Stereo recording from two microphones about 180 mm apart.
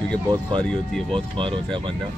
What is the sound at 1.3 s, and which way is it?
Speech, 30° right (ahead or behind).